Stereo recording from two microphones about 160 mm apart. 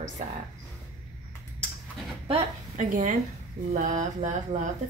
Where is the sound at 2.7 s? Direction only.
50° right (ahead or behind).